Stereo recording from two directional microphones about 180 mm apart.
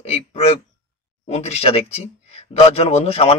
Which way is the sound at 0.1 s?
35° left (ahead or behind).